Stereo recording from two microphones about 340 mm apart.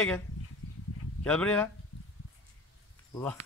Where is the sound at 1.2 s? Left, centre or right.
Centre.